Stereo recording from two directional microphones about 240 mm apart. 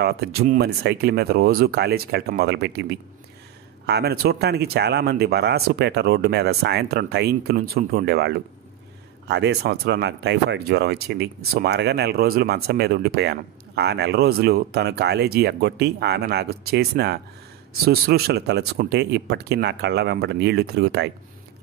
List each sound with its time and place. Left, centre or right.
0.0 s speech: right
9.3 s speech: right